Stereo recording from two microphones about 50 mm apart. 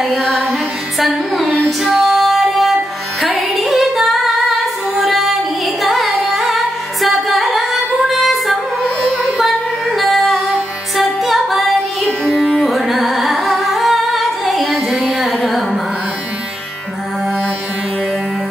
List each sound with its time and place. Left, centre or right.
0.2 s music: centre
0.9 s music: centre
9.9 s music: centre